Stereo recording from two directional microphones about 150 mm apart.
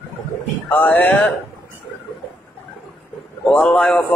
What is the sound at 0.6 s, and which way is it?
Speech, 10° left (ahead or behind).